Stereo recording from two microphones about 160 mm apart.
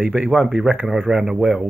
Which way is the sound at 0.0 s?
10° right (ahead or behind).